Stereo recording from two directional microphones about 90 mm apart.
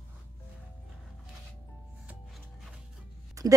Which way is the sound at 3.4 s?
40° right (ahead or behind).